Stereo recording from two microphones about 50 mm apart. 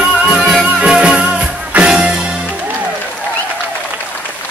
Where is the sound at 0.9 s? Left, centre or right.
Right.